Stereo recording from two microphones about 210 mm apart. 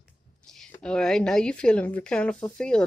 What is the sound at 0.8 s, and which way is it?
Speech, 5° left (ahead or behind).